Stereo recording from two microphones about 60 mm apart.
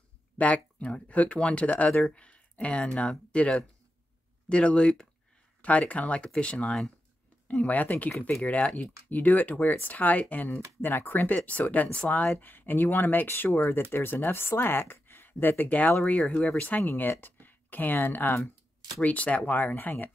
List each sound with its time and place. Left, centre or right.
0.4 s speech: left
2.0 s a sound: left
2.9 s speech: centre
13.6 s speech: left
18.9 s speech: left